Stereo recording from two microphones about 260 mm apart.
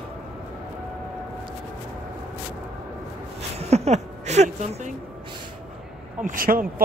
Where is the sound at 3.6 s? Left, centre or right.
Right.